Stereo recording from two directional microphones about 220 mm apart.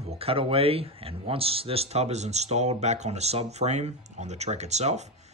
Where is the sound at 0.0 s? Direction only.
25° right (ahead or behind).